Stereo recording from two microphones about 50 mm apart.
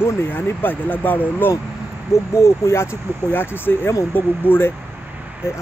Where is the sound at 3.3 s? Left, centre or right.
Left.